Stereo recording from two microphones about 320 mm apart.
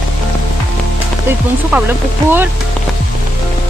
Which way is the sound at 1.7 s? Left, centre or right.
Centre.